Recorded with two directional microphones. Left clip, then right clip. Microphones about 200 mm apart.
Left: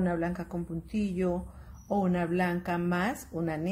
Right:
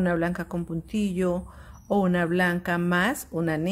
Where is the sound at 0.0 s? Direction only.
25° right (ahead or behind).